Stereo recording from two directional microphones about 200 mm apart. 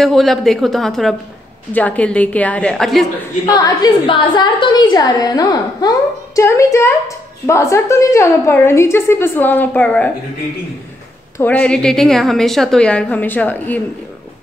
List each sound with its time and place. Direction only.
0.0 s a woman's voice: centre (ahead or behind)
3.4 s a woman's voice: 20° left (ahead or behind)
11.3 s a woman's voice: 10° left (ahead or behind)